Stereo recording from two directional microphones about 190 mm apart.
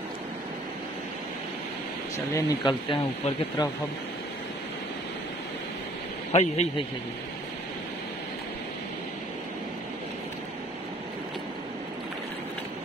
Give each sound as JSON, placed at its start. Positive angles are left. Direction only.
{"t": 2.1, "sound": "speech", "side_deg": 20}
{"t": 6.3, "sound": "a man's voice", "side_deg": 35}